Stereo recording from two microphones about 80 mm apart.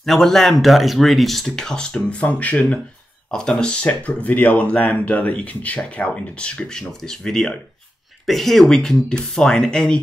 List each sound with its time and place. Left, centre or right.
0.0 s speech: centre